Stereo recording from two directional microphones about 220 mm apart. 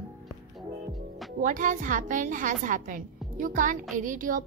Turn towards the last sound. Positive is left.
turn(degrees=-40)  # may be behind; listen again after turning